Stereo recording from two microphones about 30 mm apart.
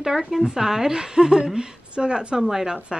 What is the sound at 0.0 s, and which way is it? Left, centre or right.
A woman's voice, centre.